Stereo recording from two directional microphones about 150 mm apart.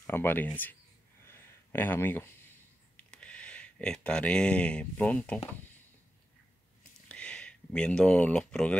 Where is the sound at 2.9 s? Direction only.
5° left (ahead or behind).